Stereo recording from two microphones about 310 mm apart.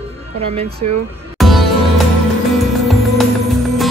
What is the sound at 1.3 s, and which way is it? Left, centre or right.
Music, centre.